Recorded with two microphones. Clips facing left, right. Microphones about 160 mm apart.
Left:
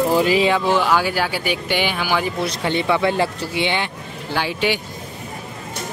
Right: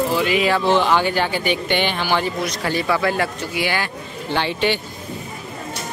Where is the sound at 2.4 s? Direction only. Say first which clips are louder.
Left 1 dB; 25° left (ahead or behind).